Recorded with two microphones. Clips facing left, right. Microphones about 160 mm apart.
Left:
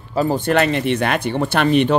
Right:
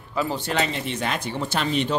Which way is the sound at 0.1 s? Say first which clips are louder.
Left 8 dB; 40° left (ahead or behind).